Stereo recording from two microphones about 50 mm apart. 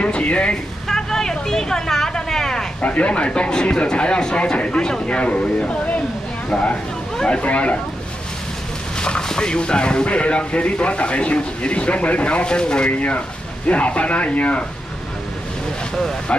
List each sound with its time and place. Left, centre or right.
0.0 s speech: left
0.8 s vehicle: centre
2.8 s speech: left
9.0 s speech: centre